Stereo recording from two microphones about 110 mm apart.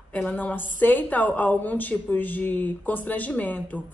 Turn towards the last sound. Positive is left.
turn(degrees=15)  # may be behind; listen again after turning